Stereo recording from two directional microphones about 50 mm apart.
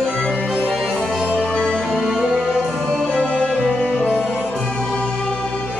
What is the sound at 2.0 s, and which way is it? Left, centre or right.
Music, centre.